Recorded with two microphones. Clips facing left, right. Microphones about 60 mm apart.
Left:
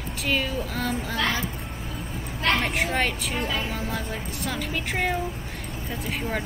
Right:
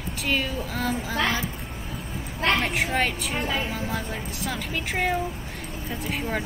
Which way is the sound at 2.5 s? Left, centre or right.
Centre.